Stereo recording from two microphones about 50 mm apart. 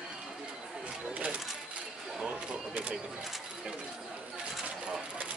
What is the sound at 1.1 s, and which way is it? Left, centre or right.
Speech, right.